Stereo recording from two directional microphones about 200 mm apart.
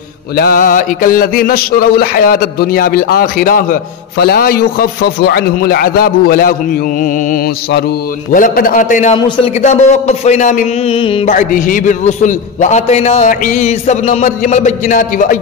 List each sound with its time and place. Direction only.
0.4 s mantra: 45° left (ahead or behind)
8.3 s a man's voice: 45° left (ahead or behind)
11.0 s a man's voice: 25° left (ahead or behind)